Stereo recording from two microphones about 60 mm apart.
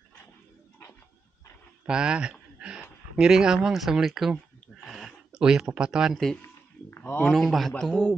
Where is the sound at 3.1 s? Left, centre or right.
Centre.